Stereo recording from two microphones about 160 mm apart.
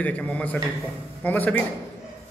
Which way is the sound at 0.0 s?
10° left (ahead or behind).